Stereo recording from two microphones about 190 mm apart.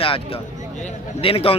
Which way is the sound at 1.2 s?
30° left (ahead or behind).